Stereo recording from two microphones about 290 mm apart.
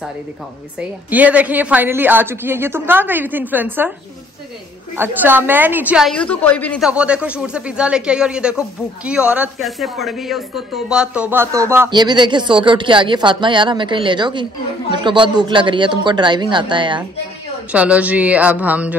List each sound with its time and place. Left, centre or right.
0.7 s speech: centre
4.9 s a woman's voice: centre
17.6 s a woman's voice: centre